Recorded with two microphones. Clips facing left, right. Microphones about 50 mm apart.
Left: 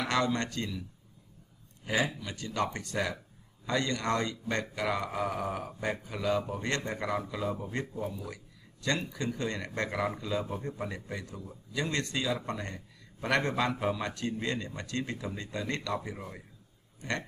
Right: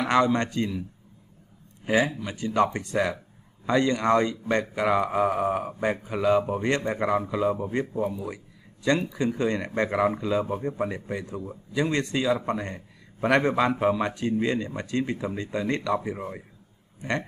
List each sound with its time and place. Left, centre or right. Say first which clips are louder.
0.0 s a man's voice: right 7 dB; right
1.9 s a man's voice: right 7 dB; right